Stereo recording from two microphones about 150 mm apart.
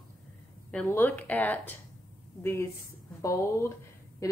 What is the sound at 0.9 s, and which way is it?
Speech, 15° left (ahead or behind).